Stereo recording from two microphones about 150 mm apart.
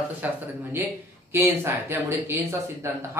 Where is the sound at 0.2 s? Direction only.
10° right (ahead or behind).